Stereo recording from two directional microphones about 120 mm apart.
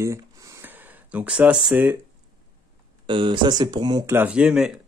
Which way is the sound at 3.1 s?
45° right (ahead or behind).